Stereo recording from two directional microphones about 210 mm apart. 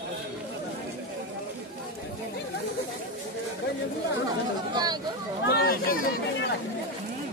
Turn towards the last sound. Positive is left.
turn(degrees=45)  # may be behind; listen again after turning